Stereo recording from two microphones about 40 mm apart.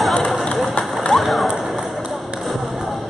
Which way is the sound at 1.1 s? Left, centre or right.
Centre.